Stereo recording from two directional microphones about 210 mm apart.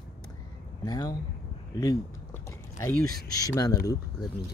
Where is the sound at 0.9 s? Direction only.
20° left (ahead or behind).